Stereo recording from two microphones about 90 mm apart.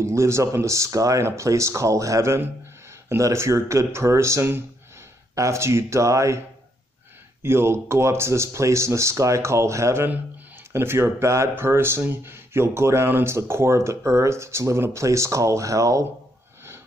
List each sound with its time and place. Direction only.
0.0 s speech: 30° right (ahead or behind)
7.4 s speech: 30° right (ahead or behind)